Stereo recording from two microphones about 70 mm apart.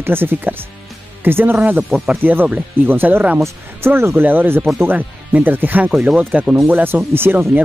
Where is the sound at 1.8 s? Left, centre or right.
Centre.